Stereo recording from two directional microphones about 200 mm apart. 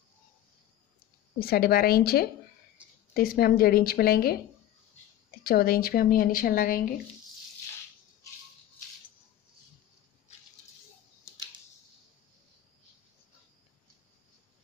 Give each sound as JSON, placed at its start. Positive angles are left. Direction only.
{"t": 0.9, "sound": "speech", "side_deg": 50}
{"t": 5.4, "sound": "speech", "side_deg": 50}